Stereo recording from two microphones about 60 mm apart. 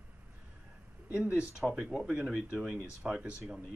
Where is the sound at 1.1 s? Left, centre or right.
Centre.